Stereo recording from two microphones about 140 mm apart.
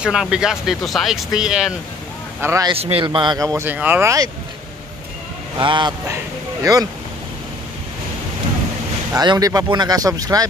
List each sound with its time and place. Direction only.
0.0 s speech: 5° right (ahead or behind)
2.4 s speech: 20° right (ahead or behind)
2.8 s speech: 40° right (ahead or behind); by 4.3 s 20° right (ahead or behind)
5.6 s a man's voice: 35° right (ahead or behind)
9.1 s speech: 30° right (ahead or behind)